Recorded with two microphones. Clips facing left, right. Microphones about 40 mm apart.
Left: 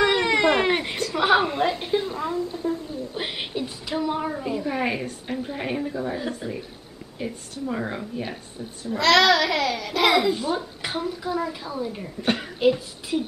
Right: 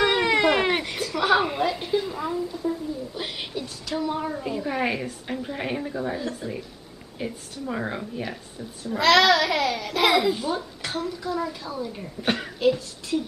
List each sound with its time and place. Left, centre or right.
0.0 s a sound: centre
1.1 s a sound: centre
1.6 s a woman's voice: centre
2.1 s a child's voice: centre
2.4 s a woman's voice: left
2.7 s a sound: left
4.0 s a woman's voice: centre
4.5 s a child's voice: centre
6.1 s a woman's voice: centre
7.2 s a child's voice: centre
10.8 s a woman's voice: centre
12.2 s a child's voice: centre
12.5 s a woman's voice: centre